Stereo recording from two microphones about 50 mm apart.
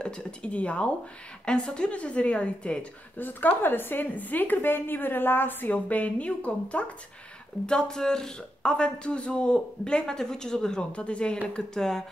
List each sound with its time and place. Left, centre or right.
0.0 s speech: left
3.2 s a woman's voice: left; by 12.0 s centre